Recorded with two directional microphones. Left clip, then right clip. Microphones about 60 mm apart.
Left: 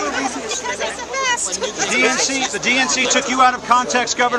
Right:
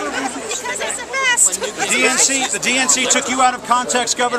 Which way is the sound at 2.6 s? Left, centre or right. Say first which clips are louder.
Left 2 dB; right.